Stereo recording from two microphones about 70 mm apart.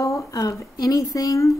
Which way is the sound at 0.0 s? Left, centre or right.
Left.